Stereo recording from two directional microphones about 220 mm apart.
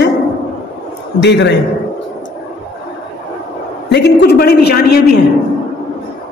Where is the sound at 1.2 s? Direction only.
50° left (ahead or behind).